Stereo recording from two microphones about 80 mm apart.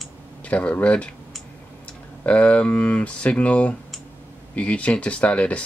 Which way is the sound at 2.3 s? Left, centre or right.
Centre.